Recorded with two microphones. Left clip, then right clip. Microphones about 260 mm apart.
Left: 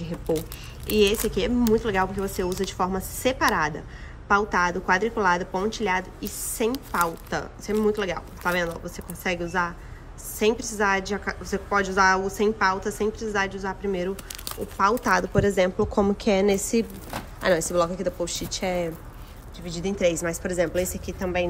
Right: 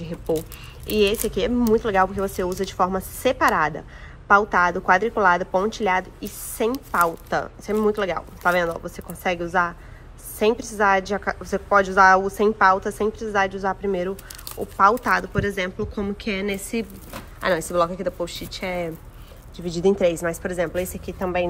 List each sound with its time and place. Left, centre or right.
0.0 s a woman's voice: centre
19.6 s a woman's voice: centre